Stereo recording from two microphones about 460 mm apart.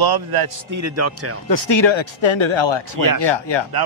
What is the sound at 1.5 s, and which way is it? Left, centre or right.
Speech, left.